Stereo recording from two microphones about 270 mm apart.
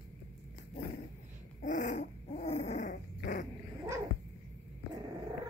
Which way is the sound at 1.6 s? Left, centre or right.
Left.